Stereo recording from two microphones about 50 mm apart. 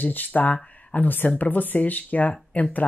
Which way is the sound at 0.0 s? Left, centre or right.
Left.